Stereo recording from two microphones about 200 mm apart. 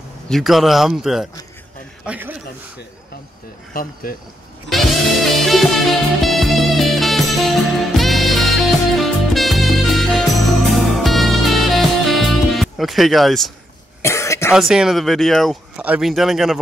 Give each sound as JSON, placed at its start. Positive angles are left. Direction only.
{"t": 0.3, "sound": "speech", "side_deg": 0}
{"t": 3.7, "sound": "speech", "side_deg": 45}
{"t": 5.4, "sound": "music", "side_deg": 0}
{"t": 14.0, "sound": "cough", "side_deg": 15}
{"t": 14.5, "sound": "speech", "side_deg": -5}